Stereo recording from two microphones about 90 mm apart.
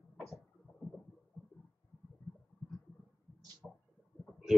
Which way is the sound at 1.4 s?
25° left (ahead or behind).